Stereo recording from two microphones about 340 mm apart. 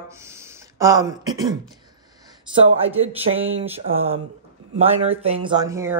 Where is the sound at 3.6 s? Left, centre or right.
Centre.